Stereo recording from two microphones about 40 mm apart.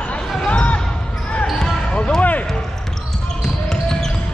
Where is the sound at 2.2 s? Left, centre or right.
Left.